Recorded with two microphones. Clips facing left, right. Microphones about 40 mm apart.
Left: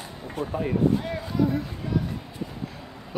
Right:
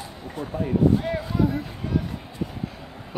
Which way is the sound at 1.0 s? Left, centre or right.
Centre.